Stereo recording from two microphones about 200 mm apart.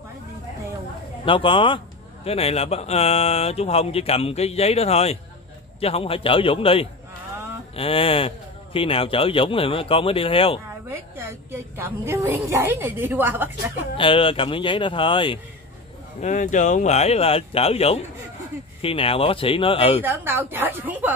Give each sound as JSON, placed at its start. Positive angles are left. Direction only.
{"t": 1.2, "sound": "speech", "side_deg": 25}
{"t": 10.9, "sound": "a woman's voice", "side_deg": -10}
{"t": 13.9, "sound": "speech", "side_deg": 25}
{"t": 16.2, "sound": "speech", "side_deg": 35}
{"t": 20.0, "sound": "a woman's voice", "side_deg": -10}